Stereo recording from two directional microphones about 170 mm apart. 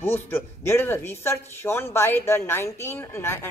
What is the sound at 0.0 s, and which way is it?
Speech, 15° left (ahead or behind).